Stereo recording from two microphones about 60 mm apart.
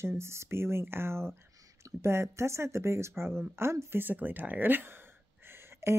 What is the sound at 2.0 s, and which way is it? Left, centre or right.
Speech, right.